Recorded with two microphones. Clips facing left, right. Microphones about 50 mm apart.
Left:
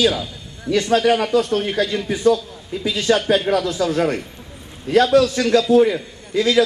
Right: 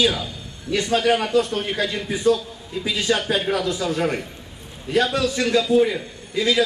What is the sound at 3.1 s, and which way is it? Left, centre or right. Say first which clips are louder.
Speech: left 5 dB; left.